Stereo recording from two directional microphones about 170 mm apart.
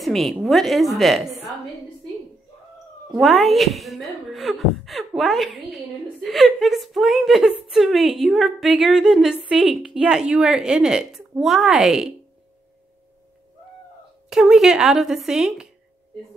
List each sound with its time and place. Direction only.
0.0 s a woman's voice: centre (ahead or behind)
3.2 s a woman's voice: centre (ahead or behind)
14.3 s a woman's voice: centre (ahead or behind)